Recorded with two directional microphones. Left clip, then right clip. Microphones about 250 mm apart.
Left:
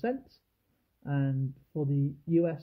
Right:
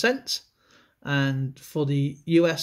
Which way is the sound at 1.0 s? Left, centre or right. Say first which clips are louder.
Right 9 dB; centre.